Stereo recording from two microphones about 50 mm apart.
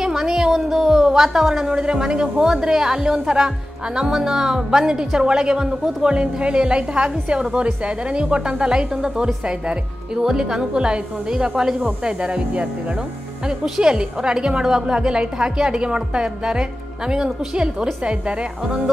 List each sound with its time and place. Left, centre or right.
0.0 s a woman's voice: centre
13.7 s a woman's voice: centre